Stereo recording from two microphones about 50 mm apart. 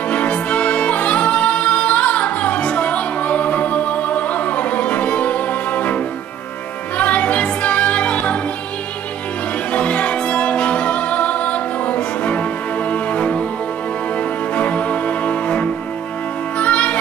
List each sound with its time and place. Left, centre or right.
0.1 s music: left
7.0 s music: left
9.7 s music: left
14.5 s music: left